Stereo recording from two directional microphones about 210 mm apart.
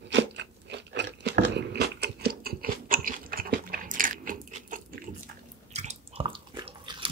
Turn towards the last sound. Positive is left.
turn(degrees=-25)  # may be behind; listen again after turning